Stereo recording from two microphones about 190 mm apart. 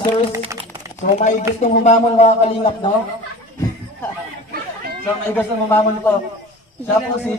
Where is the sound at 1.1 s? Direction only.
40° left (ahead or behind).